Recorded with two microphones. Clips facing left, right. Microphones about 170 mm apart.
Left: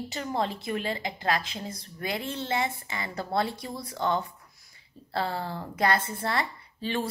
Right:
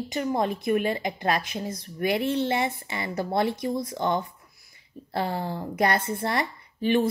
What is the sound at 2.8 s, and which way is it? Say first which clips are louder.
Speech: right 5 dB; 20° right (ahead or behind).